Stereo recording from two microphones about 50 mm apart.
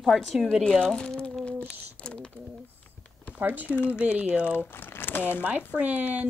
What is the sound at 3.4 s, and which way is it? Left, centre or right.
Speech, right.